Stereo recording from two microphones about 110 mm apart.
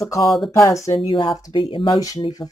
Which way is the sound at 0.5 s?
30° left (ahead or behind).